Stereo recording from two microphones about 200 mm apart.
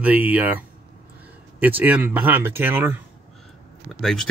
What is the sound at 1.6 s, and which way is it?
Speech, 10° right (ahead or behind).